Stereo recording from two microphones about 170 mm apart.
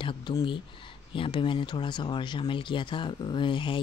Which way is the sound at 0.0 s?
30° left (ahead or behind).